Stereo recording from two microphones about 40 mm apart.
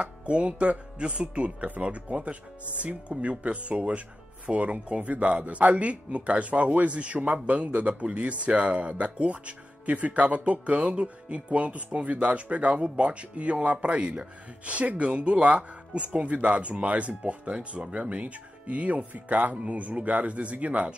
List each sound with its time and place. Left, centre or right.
0.0 s speech: right